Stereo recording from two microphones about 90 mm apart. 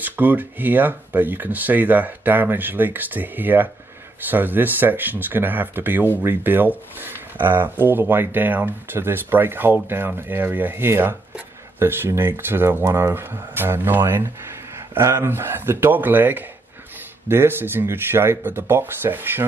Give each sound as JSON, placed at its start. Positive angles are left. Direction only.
{"t": 0.0, "sound": "speech", "side_deg": -20}